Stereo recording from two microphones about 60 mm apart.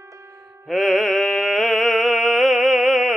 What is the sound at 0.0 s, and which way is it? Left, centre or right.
Music, right.